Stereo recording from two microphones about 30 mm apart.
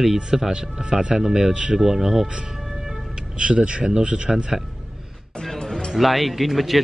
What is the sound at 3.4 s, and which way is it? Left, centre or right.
Speech, right.